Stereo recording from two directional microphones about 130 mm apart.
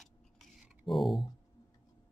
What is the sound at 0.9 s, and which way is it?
Speech, centre (ahead or behind).